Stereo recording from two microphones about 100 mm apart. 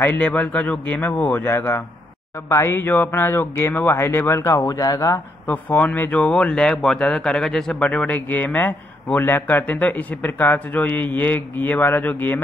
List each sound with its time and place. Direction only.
0.0 s speech: 15° left (ahead or behind); by 5.2 s 35° left (ahead or behind)
5.5 s speech: 15° left (ahead or behind)